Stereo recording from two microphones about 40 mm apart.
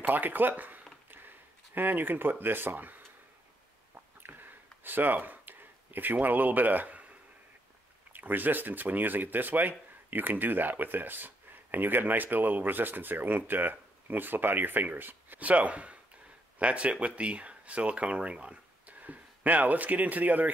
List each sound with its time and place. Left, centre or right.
0.0 s speech: right
3.9 s a sound: right
8.1 s speech: right
18.9 s speech: right